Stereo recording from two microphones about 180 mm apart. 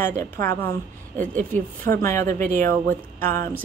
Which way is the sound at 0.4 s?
15° left (ahead or behind).